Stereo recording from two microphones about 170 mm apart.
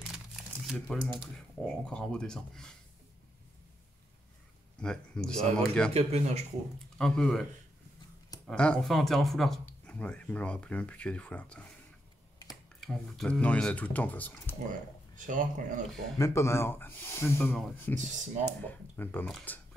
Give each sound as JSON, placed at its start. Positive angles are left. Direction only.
{"t": 0.7, "sound": "speech", "side_deg": 0}
{"t": 4.7, "sound": "speech", "side_deg": 5}
{"t": 5.9, "sound": "speech", "side_deg": -40}
{"t": 7.0, "sound": "speech", "side_deg": 5}
{"t": 8.5, "sound": "speech", "side_deg": 5}
{"t": 12.8, "sound": "speech", "side_deg": 0}
{"t": 14.7, "sound": "speech", "side_deg": -50}
{"t": 16.2, "sound": "speech", "side_deg": 15}
{"t": 17.6, "sound": "speech", "side_deg": 0}
{"t": 17.9, "sound": "speech", "side_deg": -45}
{"t": 18.4, "sound": "speech", "side_deg": 10}